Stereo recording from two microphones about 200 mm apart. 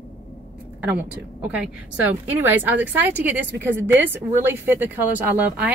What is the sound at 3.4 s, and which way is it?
Speech, 60° right (ahead or behind).